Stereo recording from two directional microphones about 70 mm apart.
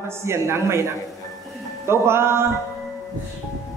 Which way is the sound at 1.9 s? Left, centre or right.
Right.